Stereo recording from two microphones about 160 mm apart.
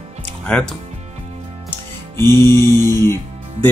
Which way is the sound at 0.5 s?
10° left (ahead or behind).